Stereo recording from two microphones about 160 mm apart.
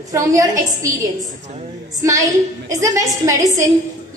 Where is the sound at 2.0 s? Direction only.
20° right (ahead or behind).